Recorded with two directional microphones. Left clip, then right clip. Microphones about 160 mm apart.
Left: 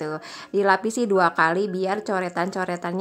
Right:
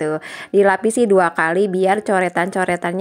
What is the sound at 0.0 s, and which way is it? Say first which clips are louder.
A woman's voice: right 8 dB; 20° right (ahead or behind).